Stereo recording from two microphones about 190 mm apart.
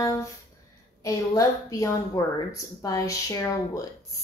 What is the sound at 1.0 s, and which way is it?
A woman's voice, 15° left (ahead or behind).